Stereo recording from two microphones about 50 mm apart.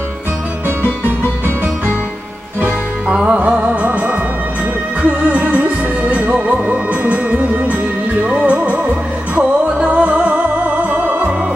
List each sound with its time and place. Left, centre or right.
3.1 s music: centre
3.3 s music: right